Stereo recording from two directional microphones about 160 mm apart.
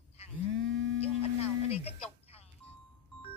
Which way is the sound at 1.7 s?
40° left (ahead or behind).